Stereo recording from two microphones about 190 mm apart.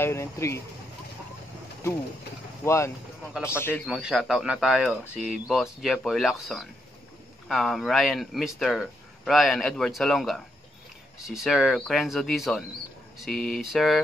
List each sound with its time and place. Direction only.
0.0 s a sound: 15° left (ahead or behind)
2.6 s a man's voice: 15° left (ahead or behind)
3.8 s speech: centre (ahead or behind)